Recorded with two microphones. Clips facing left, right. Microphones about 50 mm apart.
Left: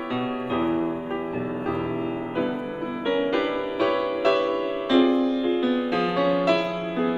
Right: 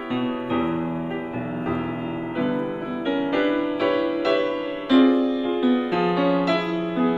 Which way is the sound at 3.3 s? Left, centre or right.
Centre.